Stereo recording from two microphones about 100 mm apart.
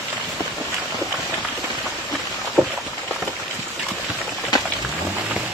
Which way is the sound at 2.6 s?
5° right (ahead or behind).